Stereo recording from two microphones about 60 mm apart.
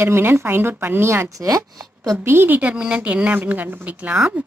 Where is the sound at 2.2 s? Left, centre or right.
Right.